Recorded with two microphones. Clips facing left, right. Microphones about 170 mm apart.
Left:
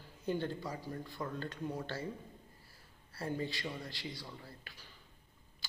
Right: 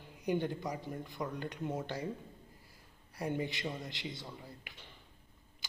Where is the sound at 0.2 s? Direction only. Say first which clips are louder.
Right 3 dB; 15° right (ahead or behind).